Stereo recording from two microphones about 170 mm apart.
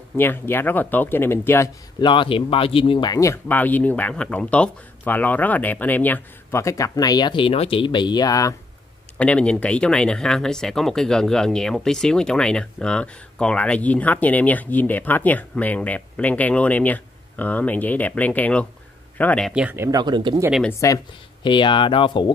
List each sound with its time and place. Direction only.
0.2 s speech: 15° left (ahead or behind)
2.0 s speech: 30° left (ahead or behind)
9.2 s speech: 5° left (ahead or behind)
19.5 s speech: 10° right (ahead or behind); by 20.4 s 25° right (ahead or behind)
20.8 s speech: 25° left (ahead or behind)